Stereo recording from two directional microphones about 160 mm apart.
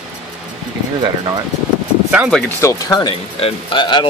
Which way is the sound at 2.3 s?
5° left (ahead or behind).